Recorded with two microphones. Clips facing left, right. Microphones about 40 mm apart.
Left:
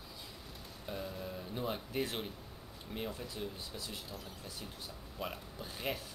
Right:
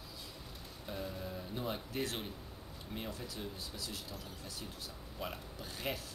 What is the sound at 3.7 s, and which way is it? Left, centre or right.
Speech, left.